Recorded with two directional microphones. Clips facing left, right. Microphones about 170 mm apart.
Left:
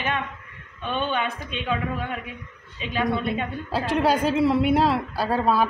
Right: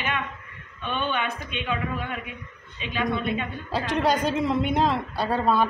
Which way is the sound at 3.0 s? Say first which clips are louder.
Left 2 dB; 5° left (ahead or behind).